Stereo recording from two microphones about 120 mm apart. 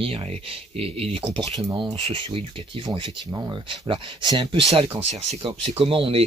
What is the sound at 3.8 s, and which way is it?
Speech, 45° right (ahead or behind).